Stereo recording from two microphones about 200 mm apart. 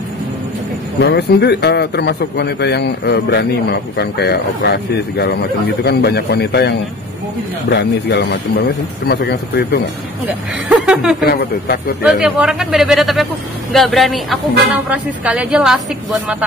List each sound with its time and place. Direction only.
1.0 s a man's voice: 55° left (ahead or behind)
7.7 s a man's voice: 60° left (ahead or behind)
10.2 s speech: 5° right (ahead or behind)
11.2 s speech: 50° left (ahead or behind)
12.0 s a man's voice: 5° right (ahead or behind)